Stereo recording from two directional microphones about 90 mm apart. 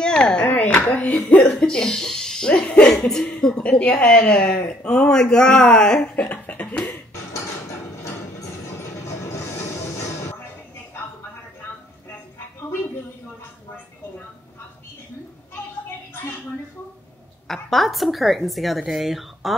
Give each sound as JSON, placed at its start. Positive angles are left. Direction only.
{"t": 0.0, "sound": "speech", "side_deg": 10}
{"t": 8.0, "sound": "music", "side_deg": 35}
{"t": 17.5, "sound": "a woman's voice", "side_deg": 0}